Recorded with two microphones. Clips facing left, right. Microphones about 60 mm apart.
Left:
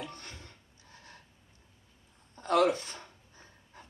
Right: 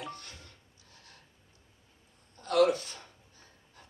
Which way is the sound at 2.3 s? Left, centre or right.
Left.